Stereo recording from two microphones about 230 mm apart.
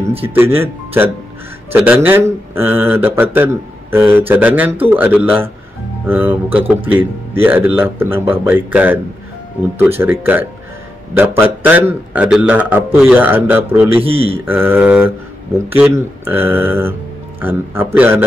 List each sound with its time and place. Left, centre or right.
0.2 s speech: centre
14.0 s speech: right
14.4 s speech: centre